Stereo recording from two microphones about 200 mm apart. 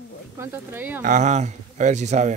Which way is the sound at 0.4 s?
10° right (ahead or behind).